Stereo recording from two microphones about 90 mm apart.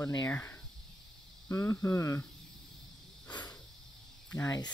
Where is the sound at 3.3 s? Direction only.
50° left (ahead or behind).